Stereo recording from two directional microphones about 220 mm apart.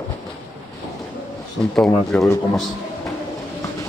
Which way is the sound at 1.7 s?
Centre (ahead or behind).